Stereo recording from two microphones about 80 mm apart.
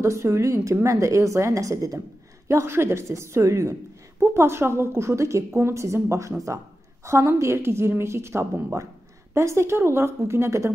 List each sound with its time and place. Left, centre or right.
0.0 s a woman's voice: right
2.4 s a woman's voice: right